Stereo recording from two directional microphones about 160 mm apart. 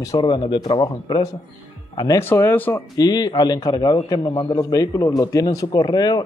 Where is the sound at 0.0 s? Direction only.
25° left (ahead or behind).